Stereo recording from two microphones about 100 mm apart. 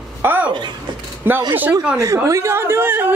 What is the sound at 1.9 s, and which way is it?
A woman's voice, 30° right (ahead or behind).